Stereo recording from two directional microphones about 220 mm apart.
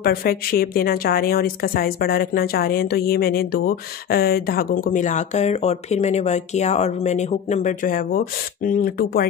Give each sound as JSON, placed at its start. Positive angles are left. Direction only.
{"t": 0.0, "sound": "a woman's voice", "side_deg": 45}